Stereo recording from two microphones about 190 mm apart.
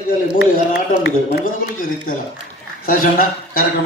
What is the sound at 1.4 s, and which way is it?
Speech, 45° left (ahead or behind).